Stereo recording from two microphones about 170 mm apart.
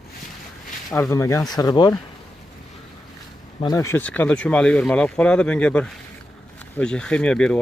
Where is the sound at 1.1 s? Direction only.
15° left (ahead or behind).